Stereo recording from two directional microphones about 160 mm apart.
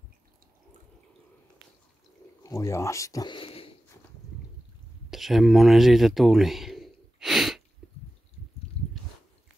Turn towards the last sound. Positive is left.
turn(degrees=0)  # may be behind; listen again after turning